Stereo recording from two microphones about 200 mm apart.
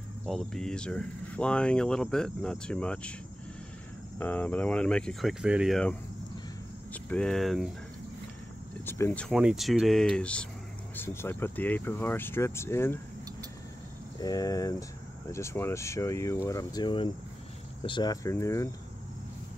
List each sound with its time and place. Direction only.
0.3 s speech: 5° left (ahead or behind)
4.2 s speech: 10° left (ahead or behind)
8.8 s speech: 10° left (ahead or behind)
9.3 s speech: 5° right (ahead or behind); by 13.0 s 10° left (ahead or behind)
14.2 s speech: 20° left (ahead or behind)